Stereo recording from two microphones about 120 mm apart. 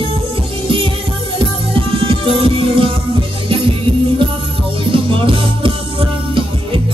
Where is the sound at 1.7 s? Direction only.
45° right (ahead or behind).